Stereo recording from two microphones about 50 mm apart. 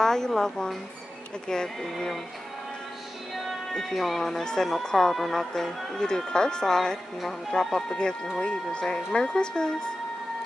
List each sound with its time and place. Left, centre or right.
0.0 s speech: centre
3.3 s speech: centre